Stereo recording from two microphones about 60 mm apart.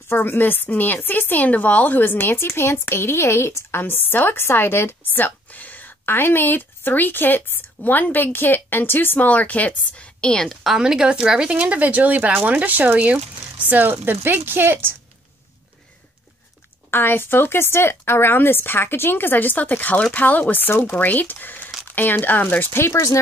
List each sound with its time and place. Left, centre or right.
0.1 s speech: left; by 10.6 s centre
10.6 s speech: centre; by 15.0 s right
16.9 s speech: left
22.8 s speech: left